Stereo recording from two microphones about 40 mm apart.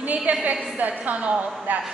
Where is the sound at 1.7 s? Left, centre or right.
Right.